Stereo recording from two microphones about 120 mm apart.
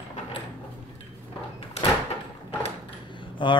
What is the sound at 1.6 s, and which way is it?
Door, 50° left (ahead or behind).